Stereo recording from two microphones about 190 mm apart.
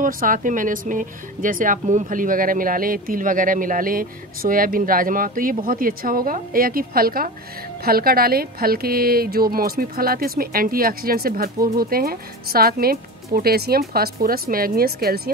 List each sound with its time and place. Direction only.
0.0 s a woman's voice: 45° right (ahead or behind)